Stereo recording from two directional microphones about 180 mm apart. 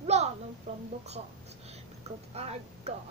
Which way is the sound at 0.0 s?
35° right (ahead or behind).